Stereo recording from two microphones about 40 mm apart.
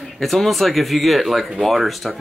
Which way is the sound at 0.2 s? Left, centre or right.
Centre.